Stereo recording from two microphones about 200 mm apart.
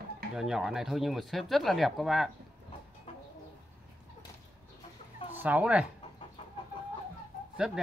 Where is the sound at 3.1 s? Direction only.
30° left (ahead or behind).